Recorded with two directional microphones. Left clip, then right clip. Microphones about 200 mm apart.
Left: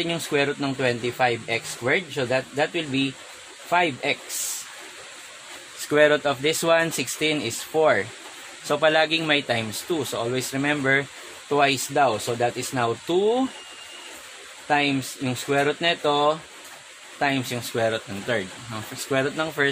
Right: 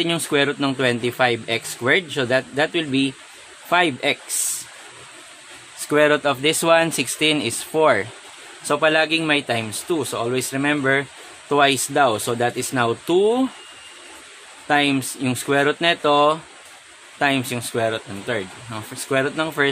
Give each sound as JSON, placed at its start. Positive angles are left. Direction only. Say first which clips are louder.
{"t": 0.0, "sound": "speech", "louder": "right 4 dB", "side_deg": -30}
{"t": 5.9, "sound": "speech", "louder": "right 2 dB", "side_deg": -20}
{"t": 14.7, "sound": "speech", "louder": "right 3 dB", "side_deg": -30}